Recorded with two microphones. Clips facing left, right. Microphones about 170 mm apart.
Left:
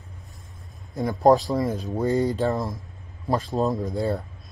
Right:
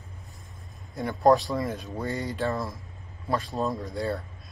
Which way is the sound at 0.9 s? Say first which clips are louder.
Left 3 dB; 20° left (ahead or behind).